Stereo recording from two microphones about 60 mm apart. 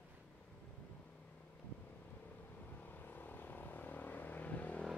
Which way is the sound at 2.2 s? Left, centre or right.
Left.